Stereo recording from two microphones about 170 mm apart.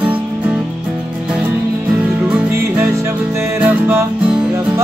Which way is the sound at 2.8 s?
15° right (ahead or behind).